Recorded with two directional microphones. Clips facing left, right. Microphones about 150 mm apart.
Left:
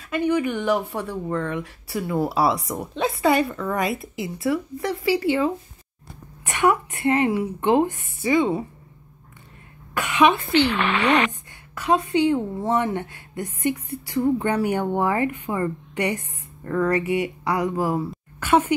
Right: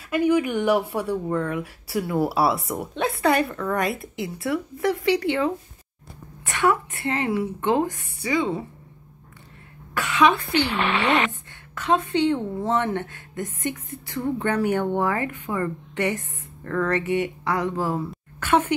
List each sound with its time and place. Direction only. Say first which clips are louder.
0.0 s speech: right 1 dB; 10° right (ahead or behind); by 8.6 s 15° left (ahead or behind)
9.9 s speech: left 1 dB; 20° left (ahead or behind)
10.8 s speech: left 2 dB; 45° left (ahead or behind)
11.7 s speech: left 1 dB; 10° left (ahead or behind)